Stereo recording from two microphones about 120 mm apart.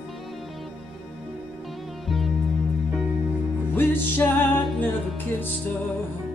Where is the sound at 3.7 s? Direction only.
20° left (ahead or behind).